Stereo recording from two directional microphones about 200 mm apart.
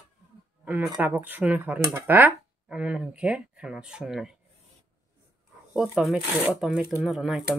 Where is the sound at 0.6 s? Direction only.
10° right (ahead or behind).